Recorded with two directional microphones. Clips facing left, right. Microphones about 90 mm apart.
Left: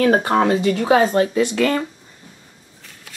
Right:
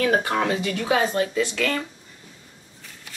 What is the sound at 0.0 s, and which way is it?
Speech, 30° left (ahead or behind).